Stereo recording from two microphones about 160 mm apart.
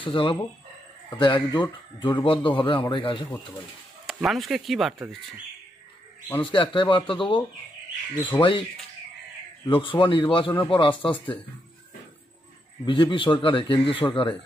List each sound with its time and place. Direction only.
0.0 s a man's voice: 30° left (ahead or behind)
4.1 s speech: centre (ahead or behind)
6.4 s a man's voice: 30° left (ahead or behind)
9.7 s a man's voice: 30° left (ahead or behind)
12.8 s a man's voice: 30° left (ahead or behind)